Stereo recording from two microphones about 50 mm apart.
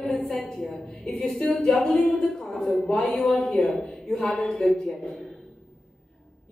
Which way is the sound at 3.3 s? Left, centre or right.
Centre.